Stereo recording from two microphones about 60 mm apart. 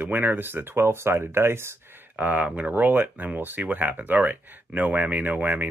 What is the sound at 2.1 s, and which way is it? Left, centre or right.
Speech, right.